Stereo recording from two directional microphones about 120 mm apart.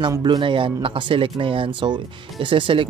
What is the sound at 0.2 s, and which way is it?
Speech, 40° right (ahead or behind).